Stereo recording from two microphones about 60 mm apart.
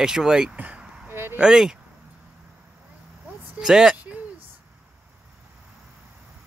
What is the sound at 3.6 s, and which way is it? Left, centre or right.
Speech, centre.